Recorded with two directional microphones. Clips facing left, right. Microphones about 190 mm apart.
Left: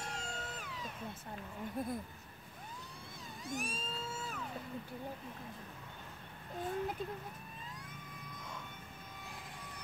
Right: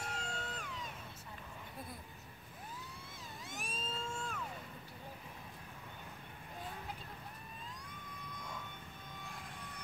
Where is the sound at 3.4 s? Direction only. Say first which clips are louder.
Left 5 dB; centre (ahead or behind).